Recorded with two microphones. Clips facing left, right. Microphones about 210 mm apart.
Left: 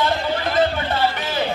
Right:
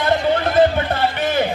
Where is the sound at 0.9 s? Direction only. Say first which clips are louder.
Right 3 dB; 55° right (ahead or behind).